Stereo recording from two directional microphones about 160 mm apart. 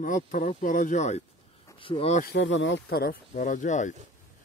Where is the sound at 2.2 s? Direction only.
70° left (ahead or behind); by 3.9 s 50° left (ahead or behind).